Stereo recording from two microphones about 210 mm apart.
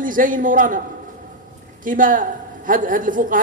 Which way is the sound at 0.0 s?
40° right (ahead or behind).